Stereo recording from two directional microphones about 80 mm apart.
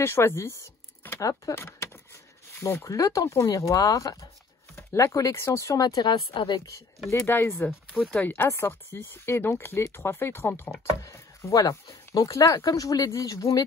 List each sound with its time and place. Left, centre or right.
0.0 s speech: left
5.8 s speech: left
7.2 s speech: left
7.9 s speech: centre
8.2 s speech: centre
8.5 s speech: left
11.0 s speech: left